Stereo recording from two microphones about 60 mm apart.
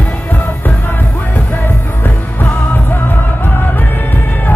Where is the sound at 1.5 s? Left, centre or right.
Left.